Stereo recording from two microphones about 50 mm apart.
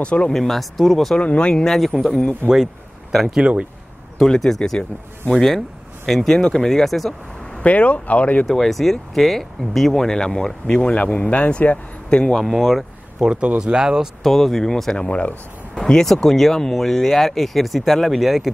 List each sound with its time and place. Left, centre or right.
0.0 s speech: left
0.3 s speech: centre
1.1 s speech: left
1.6 s speech: centre
2.5 s speech: centre
3.3 s speech: right
4.2 s speech: centre
7.5 s speech: left
8.5 s speech: centre
12.4 s speech: centre
13.2 s speech: centre
14.2 s speech: centre
15.0 s speech: left; by 18.5 s centre